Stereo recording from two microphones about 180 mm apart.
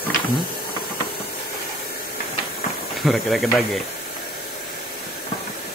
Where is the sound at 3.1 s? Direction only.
Centre (ahead or behind).